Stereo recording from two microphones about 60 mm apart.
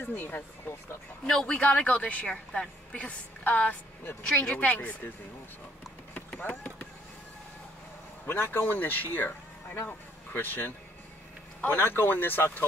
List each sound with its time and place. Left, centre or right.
0.0 s speech: left
1.2 s speech: centre
4.0 s speech: left
4.5 s speech: left
6.1 s run: left
8.3 s speech: left